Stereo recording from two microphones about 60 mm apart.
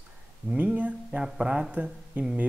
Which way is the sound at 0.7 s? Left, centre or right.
Right.